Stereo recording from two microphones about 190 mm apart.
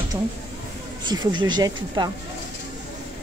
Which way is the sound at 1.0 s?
20° right (ahead or behind).